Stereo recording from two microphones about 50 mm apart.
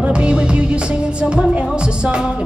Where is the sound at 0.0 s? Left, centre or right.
Centre.